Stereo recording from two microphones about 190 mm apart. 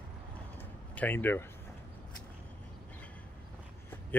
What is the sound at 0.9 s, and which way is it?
Speech, 10° left (ahead or behind).